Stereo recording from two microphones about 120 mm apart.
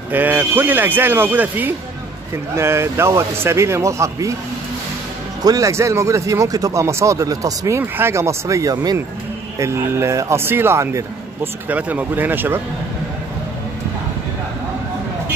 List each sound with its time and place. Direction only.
0.1 s speech: 15° right (ahead or behind)
5.4 s speech: 30° right (ahead or behind)